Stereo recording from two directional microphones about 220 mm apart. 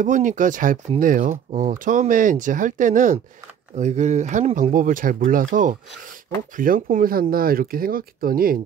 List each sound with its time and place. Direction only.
0.0 s speech: 35° right (ahead or behind)